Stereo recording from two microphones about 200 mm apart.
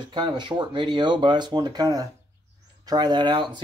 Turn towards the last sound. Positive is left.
turn(degrees=-20)  # may be behind; listen again after turning